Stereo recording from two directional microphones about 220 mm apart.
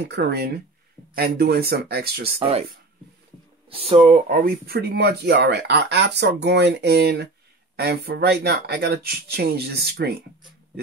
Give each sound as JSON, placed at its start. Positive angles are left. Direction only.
{"t": 0.0, "sound": "speech", "side_deg": -50}
{"t": 2.3, "sound": "speech", "side_deg": -25}
{"t": 3.7, "sound": "speech", "side_deg": -25}
{"t": 4.3, "sound": "speech", "side_deg": -40}